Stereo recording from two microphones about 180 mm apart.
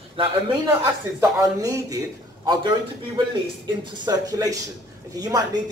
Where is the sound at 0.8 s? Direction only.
20° right (ahead or behind).